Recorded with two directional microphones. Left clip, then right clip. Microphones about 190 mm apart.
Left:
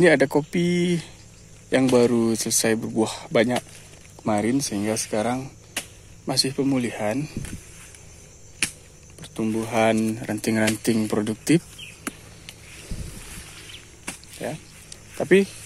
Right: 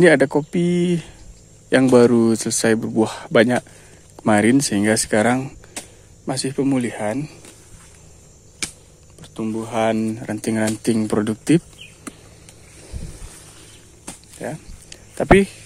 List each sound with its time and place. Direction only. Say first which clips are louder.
0.0 s speech: right 4 dB; 15° right (ahead or behind); by 5.9 s 35° right (ahead or behind)
6.2 s speech: right 1 dB; 15° right (ahead or behind)
9.2 s speech: even; centre (ahead or behind); by 11.6 s 20° right (ahead or behind)
14.4 s speech: right 2 dB; 10° right (ahead or behind)
14.9 s a sound: right 5 dB; 25° right (ahead or behind)